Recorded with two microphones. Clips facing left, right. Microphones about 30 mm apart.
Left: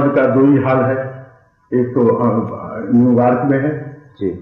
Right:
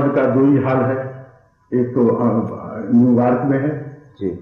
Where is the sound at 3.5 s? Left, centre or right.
Centre.